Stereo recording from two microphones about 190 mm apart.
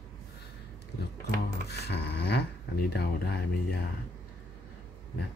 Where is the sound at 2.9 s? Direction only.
55° left (ahead or behind).